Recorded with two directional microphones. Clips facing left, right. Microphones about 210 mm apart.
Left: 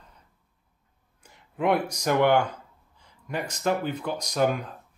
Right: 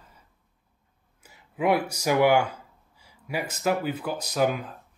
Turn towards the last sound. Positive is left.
turn(degrees=-5)  # may be behind; listen again after turning